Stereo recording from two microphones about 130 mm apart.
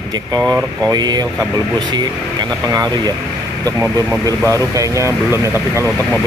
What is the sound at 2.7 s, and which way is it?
Speech, 30° right (ahead or behind).